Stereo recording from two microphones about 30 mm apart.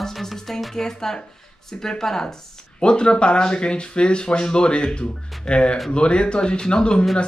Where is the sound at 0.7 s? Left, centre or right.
Centre.